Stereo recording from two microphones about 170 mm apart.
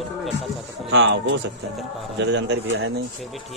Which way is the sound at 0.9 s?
90° right.